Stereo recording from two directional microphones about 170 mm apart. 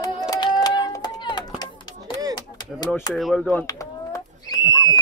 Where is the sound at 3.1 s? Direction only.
Centre (ahead or behind).